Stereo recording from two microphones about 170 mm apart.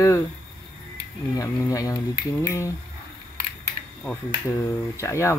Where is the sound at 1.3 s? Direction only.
20° left (ahead or behind).